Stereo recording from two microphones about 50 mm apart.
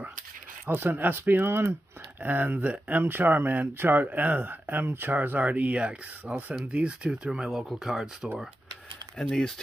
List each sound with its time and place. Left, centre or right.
0.7 s speech: right
7.2 s speech: centre
9.2 s speech: centre